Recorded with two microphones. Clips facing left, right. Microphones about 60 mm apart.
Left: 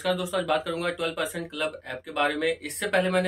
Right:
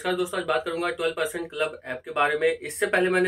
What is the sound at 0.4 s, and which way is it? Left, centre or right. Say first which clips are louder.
Speech: right 1 dB; centre.